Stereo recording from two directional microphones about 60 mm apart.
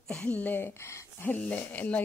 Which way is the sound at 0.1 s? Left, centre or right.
Left.